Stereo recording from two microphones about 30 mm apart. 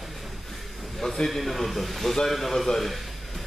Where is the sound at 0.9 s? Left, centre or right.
Centre.